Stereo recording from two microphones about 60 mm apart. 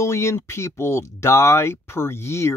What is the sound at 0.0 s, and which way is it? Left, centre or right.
Speech, left.